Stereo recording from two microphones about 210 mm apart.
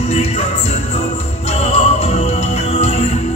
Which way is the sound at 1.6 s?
30° left (ahead or behind).